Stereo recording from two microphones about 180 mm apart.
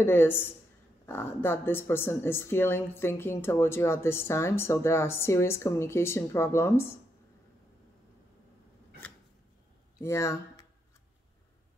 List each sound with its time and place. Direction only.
0.0 s speech: 10° left (ahead or behind)
9.9 s speech: 15° left (ahead or behind)